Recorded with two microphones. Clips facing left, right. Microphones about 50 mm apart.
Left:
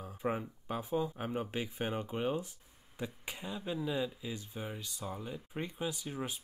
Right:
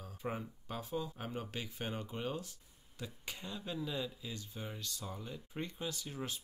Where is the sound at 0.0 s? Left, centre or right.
Centre.